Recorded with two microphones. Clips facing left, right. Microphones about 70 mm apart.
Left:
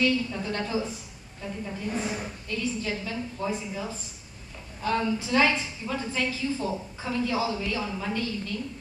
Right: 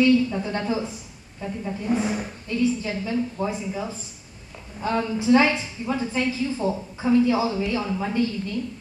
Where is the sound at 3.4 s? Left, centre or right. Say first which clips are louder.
Left 1 dB; right.